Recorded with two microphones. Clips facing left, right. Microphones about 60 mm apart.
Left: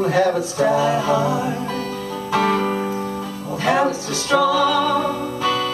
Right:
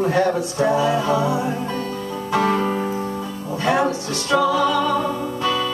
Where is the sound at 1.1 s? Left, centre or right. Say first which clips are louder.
Left 1 dB; left.